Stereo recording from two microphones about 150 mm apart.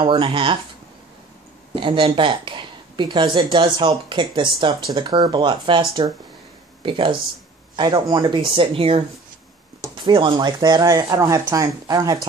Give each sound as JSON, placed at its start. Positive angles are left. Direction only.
{"t": 0.0, "sound": "speech", "side_deg": -35}
{"t": 1.8, "sound": "speech", "side_deg": -35}